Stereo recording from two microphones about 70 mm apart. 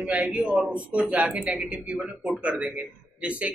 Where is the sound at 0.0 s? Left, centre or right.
Centre.